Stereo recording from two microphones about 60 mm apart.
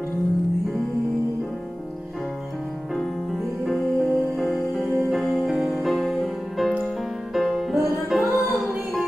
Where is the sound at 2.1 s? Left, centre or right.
Centre.